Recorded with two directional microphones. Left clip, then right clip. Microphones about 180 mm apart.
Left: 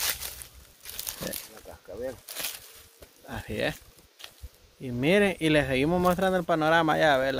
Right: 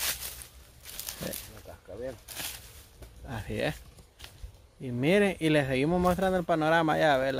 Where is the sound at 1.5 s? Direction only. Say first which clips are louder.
Left 3 dB; 45° left (ahead or behind).